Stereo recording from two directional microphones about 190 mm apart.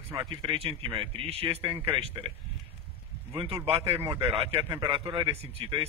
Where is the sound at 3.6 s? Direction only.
30° right (ahead or behind).